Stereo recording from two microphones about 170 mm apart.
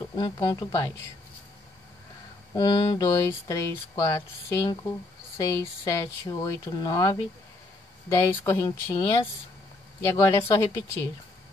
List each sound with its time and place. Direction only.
0.1 s speech: 25° left (ahead or behind)
2.5 s speech: 25° left (ahead or behind)